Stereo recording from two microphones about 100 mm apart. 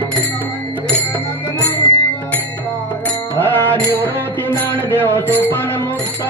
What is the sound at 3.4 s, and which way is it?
Music, 25° left (ahead or behind).